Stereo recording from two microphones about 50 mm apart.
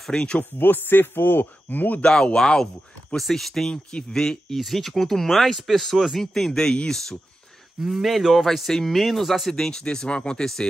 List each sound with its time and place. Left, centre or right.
0.1 s speech: centre
0.4 s speech: left
1.7 s speech: left
2.0 s speech: centre
3.7 s speech: centre
4.6 s speech: centre
7.8 s speech: centre